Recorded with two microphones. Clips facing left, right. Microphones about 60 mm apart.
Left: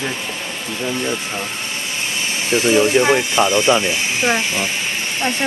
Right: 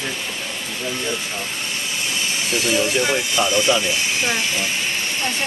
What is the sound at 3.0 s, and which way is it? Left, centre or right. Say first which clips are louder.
Speech: left 5 dB; left.